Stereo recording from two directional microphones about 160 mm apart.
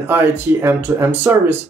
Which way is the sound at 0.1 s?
15° right (ahead or behind).